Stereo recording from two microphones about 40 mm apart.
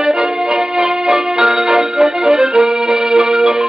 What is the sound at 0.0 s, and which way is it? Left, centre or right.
Music, centre.